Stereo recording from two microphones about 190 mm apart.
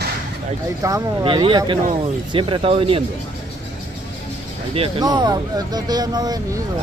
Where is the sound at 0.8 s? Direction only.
20° right (ahead or behind).